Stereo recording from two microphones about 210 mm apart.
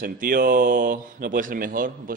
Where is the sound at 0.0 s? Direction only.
40° right (ahead or behind).